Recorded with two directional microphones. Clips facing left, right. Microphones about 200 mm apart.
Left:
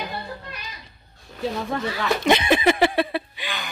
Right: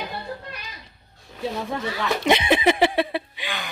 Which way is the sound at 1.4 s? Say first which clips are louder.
Left 1 dB; 5° right (ahead or behind).